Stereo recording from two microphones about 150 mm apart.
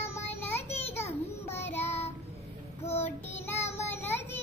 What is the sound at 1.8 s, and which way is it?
Child singing, 45° left (ahead or behind).